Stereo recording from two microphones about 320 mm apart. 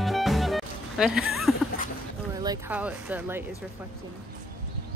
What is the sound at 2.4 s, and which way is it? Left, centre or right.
Speech, centre.